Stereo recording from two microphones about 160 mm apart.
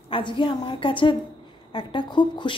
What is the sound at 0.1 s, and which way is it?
A woman's voice, 30° left (ahead or behind).